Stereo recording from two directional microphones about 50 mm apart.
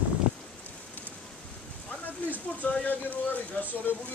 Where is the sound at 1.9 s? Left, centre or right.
Left.